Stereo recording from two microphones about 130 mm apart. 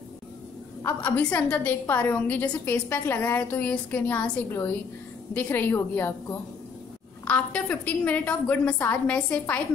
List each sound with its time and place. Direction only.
0.8 s a woman's voice: 15° left (ahead or behind)